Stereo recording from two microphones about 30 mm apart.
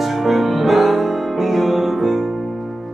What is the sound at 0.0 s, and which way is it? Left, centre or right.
Music, centre.